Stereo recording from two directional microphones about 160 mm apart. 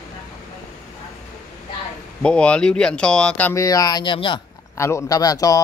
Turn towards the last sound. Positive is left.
turn(degrees=20)  # may be behind; listen again after turning